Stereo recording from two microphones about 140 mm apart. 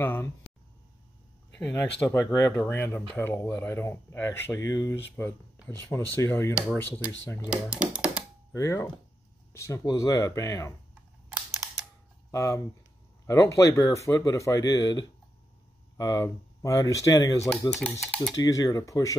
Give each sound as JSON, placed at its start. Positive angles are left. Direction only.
{"t": 0.0, "sound": "a sound", "side_deg": 15}
{"t": 1.6, "sound": "speech", "side_deg": 15}
{"t": 7.4, "sound": "speech", "side_deg": -5}
{"t": 8.5, "sound": "speech", "side_deg": 25}
{"t": 12.3, "sound": "speech", "side_deg": 25}
{"t": 17.5, "sound": "speech", "side_deg": 5}
{"t": 18.3, "sound": "speech", "side_deg": 25}